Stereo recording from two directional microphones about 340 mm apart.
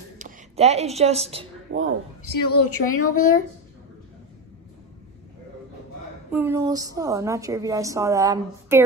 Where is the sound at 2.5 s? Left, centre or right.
Left.